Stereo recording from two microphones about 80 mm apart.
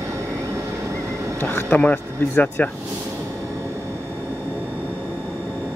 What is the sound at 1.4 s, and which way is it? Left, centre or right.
Speech, left.